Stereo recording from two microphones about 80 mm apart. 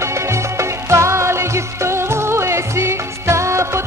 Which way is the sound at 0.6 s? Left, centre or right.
Right.